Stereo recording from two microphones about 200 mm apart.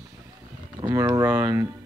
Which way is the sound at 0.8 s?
20° right (ahead or behind).